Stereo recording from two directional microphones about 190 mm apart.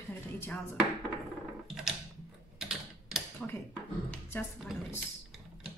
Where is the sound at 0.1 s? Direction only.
10° left (ahead or behind).